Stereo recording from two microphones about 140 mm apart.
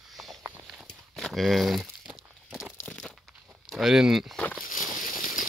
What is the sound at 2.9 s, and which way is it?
Crunch, 5° left (ahead or behind).